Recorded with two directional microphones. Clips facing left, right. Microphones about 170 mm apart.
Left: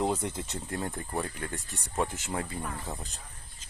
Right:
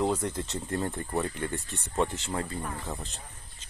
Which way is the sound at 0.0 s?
20° left (ahead or behind).